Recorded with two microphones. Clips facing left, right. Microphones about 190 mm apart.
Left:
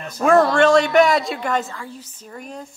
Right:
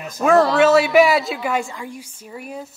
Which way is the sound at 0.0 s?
5° right (ahead or behind).